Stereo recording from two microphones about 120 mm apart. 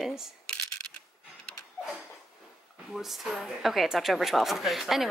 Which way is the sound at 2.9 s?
Centre (ahead or behind).